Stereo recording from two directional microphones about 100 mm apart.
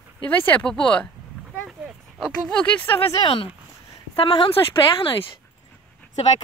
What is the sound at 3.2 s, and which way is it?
A woman's voice, 65° left (ahead or behind).